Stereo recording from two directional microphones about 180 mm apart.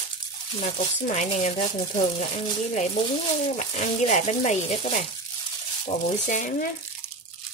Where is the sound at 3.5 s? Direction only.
40° left (ahead or behind).